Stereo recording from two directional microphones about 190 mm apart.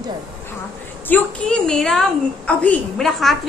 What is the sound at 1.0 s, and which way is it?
A woman's voice, 10° left (ahead or behind).